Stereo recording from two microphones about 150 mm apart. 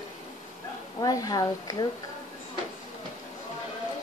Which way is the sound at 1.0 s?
25° left (ahead or behind).